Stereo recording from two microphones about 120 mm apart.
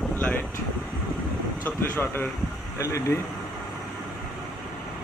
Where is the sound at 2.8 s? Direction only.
25° left (ahead or behind).